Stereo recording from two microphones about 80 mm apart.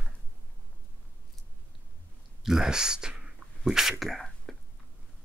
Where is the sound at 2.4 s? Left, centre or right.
Centre.